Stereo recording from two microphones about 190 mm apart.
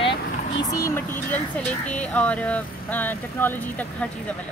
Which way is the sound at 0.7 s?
15° left (ahead or behind).